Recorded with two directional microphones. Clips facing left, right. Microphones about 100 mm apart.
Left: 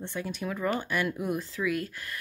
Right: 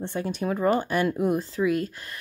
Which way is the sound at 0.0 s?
35° right (ahead or behind).